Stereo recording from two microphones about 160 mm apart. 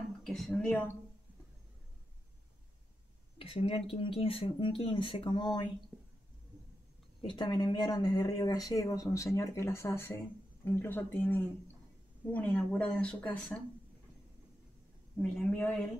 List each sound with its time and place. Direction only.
0.2 s a woman's voice: 5° left (ahead or behind)
3.3 s speech: 35° left (ahead or behind)
5.9 s a sound: 10° right (ahead or behind)
7.2 s speech: 30° left (ahead or behind); by 13.6 s 10° left (ahead or behind)
15.2 s speech: 5° left (ahead or behind)